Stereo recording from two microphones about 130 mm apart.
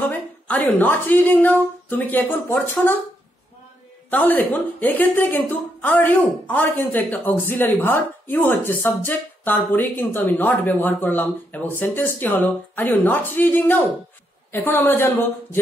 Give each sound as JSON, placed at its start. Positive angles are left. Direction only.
{"t": 0.1, "sound": "speech", "side_deg": 15}
{"t": 4.1, "sound": "a woman's voice", "side_deg": 15}